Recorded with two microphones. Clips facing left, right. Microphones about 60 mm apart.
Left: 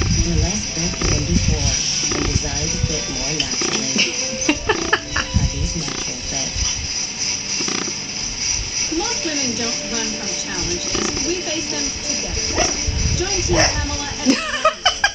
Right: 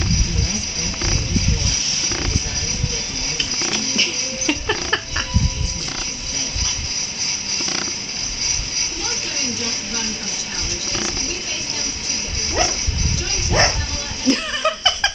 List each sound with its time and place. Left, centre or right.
3.9 s music: centre
13.5 s speech: centre
14.2 s a sound: centre